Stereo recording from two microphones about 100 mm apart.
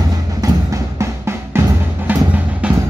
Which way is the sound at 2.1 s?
15° right (ahead or behind).